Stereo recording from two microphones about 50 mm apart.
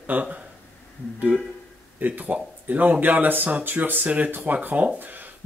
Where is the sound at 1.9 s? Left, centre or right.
Right.